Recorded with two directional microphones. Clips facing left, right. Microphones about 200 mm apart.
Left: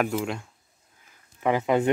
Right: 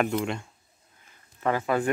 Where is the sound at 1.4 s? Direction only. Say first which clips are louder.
Left 3 dB; 15° left (ahead or behind).